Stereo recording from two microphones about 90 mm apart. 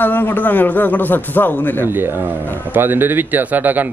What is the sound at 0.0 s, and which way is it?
A man's voice, 20° left (ahead or behind).